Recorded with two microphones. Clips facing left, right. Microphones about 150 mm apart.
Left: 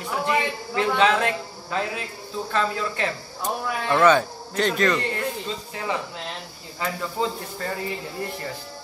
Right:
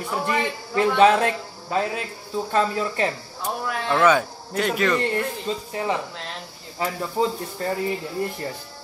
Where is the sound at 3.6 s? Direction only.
Centre (ahead or behind).